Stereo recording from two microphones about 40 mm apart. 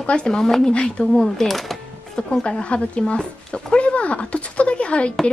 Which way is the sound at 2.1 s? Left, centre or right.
Centre.